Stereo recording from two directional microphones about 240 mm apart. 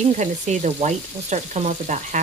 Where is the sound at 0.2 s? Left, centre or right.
Right.